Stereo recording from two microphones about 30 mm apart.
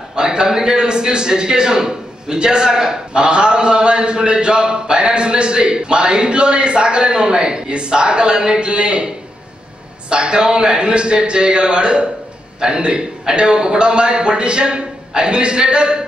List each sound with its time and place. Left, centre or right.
0.1 s a sound: right
0.5 s a man's voice: right
10.0 s a man's voice: right